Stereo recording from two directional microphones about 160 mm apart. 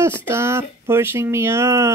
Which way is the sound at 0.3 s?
15° right (ahead or behind).